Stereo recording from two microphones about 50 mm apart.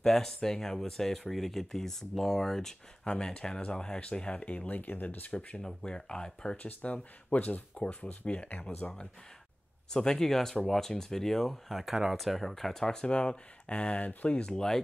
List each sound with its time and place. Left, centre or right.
0.0 s speech: centre; by 5.6 s left
5.6 s speech: centre
9.9 s speech: centre
11.8 s speech: centre; by 14.4 s left
14.4 s speech: centre